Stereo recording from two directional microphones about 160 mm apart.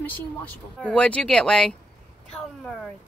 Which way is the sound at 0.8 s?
5° left (ahead or behind).